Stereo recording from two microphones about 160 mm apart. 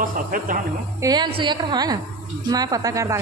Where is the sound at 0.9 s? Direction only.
25° right (ahead or behind).